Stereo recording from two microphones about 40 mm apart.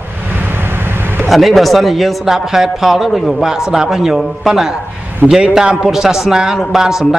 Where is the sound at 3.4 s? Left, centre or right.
Centre.